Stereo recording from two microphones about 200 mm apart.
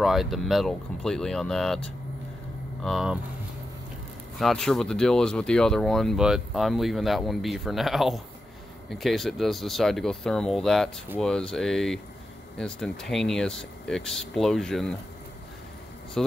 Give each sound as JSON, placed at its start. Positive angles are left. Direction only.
{"t": 0.0, "sound": "speech", "side_deg": 0}
{"t": 4.4, "sound": "speech", "side_deg": 0}
{"t": 16.2, "sound": "speech", "side_deg": 0}